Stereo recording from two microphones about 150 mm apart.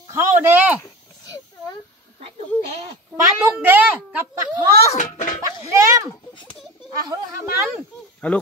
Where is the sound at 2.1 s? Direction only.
40° right (ahead or behind).